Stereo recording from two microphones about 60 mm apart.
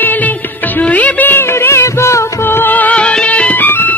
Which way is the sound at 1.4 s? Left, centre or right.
Left.